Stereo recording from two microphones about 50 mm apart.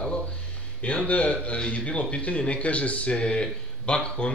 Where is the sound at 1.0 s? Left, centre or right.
Left.